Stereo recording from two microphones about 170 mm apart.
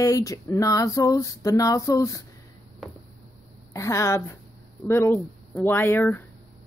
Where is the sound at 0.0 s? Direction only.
20° left (ahead or behind).